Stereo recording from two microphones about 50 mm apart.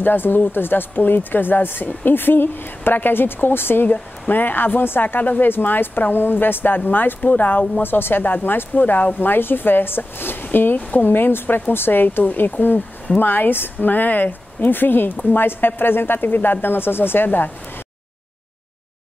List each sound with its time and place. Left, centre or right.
0.0 s speech: left